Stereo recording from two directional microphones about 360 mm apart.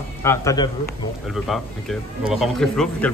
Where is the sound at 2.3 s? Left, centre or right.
Centre.